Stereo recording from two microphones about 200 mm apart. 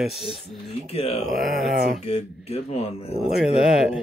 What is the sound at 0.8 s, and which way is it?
Speech, 30° left (ahead or behind).